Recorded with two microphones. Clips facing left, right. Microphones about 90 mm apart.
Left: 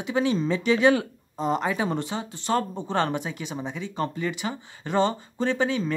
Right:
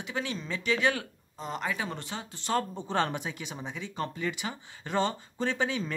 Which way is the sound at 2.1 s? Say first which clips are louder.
Left 5 dB; 5° left (ahead or behind).